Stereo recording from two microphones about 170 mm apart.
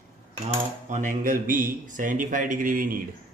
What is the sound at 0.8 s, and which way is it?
Speech, 50° right (ahead or behind).